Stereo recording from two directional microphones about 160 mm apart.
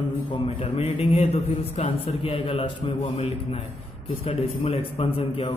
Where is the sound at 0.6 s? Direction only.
40° left (ahead or behind).